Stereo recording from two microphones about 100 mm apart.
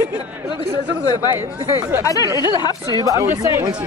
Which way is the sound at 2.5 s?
40° left (ahead or behind).